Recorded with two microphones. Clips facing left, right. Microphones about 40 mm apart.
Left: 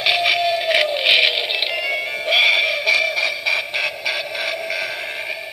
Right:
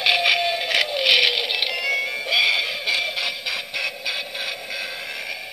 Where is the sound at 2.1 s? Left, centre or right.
Left.